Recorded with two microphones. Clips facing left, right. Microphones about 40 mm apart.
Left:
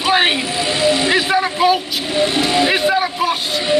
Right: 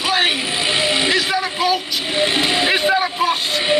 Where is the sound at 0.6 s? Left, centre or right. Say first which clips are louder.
Left 2 dB; right.